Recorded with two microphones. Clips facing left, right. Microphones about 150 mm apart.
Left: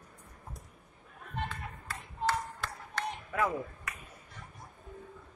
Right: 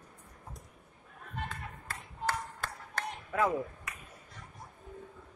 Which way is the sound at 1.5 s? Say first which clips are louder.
Left 1 dB; 45° right (ahead or behind).